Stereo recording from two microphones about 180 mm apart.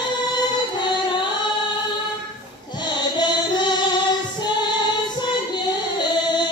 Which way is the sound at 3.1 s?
25° left (ahead or behind).